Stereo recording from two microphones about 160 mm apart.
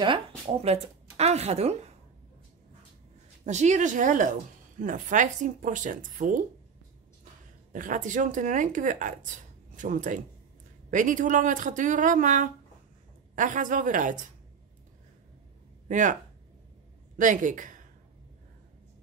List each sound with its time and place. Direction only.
0.0 s speech: 35° right (ahead or behind)
3.4 s a woman's voice: 50° right (ahead or behind)
7.7 s a woman's voice: 55° right (ahead or behind)
15.9 s a woman's voice: 55° right (ahead or behind)
17.2 s a woman's voice: 55° right (ahead or behind)